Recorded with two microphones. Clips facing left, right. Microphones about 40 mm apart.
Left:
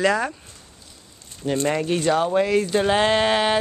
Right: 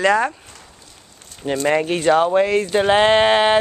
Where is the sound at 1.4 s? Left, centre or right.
Right.